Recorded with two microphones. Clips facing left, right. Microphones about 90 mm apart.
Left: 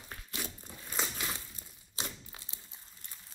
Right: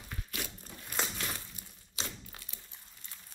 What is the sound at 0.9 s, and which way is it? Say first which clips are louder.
Crumpling: even; 10° left (ahead or behind).